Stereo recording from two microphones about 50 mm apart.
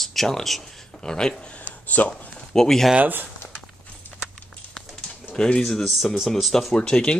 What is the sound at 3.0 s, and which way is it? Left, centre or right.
Speech, right.